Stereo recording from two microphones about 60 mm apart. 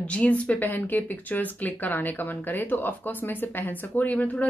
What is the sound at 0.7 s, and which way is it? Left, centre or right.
Speech, left.